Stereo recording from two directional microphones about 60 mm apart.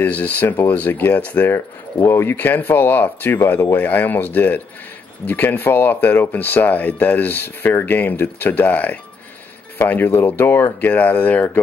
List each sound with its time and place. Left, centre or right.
0.0 s speech: left
1.5 s speech: left
2.3 s speech: left